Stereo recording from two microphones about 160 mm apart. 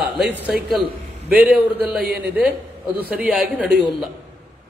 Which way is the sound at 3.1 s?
5° right (ahead or behind).